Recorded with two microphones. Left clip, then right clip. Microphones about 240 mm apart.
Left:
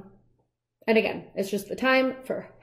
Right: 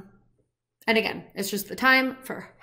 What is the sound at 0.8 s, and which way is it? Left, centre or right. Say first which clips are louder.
Speech: left 1 dB; centre.